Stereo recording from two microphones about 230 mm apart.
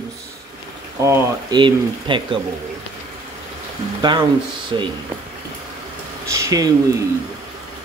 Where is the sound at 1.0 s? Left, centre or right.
Centre.